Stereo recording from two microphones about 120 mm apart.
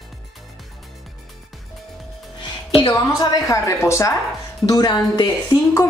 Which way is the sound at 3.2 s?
30° left (ahead or behind).